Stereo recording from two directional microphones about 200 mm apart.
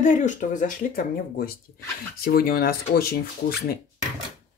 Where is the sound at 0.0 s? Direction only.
40° left (ahead or behind).